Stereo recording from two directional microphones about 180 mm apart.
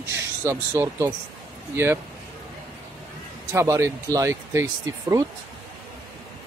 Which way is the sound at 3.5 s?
15° right (ahead or behind).